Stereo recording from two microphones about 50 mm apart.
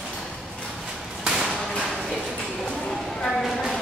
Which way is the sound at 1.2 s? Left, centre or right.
Centre.